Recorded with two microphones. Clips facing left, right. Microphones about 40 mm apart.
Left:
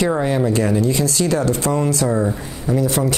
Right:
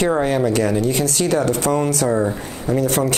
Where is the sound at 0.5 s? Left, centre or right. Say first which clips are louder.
Even; right.